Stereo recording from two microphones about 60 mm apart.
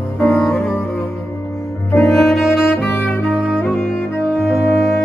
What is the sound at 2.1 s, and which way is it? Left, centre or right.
Saxophone, centre.